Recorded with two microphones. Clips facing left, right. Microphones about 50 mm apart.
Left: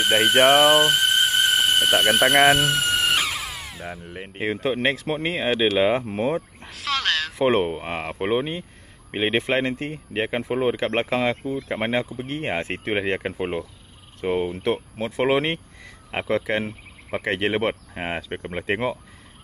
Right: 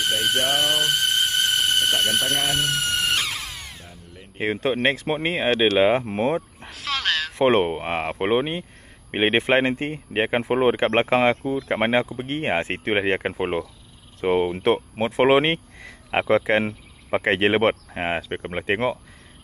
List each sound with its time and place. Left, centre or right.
0.5 s squeal: centre
4.1 s speech: left
4.6 s speech: centre
5.8 s a sound: centre
7.4 s speech: centre
15.8 s a sound: right
16.6 s speech: right; by 18.9 s centre